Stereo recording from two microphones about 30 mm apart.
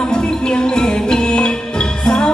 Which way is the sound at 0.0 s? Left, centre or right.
Left.